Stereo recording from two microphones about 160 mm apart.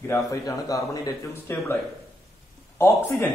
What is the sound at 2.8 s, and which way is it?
Speech, 15° left (ahead or behind).